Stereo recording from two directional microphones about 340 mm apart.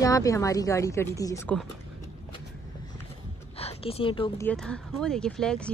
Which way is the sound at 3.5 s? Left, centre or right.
Centre.